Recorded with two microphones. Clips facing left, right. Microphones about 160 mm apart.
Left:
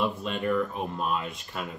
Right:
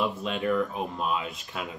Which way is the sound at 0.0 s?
Centre (ahead or behind).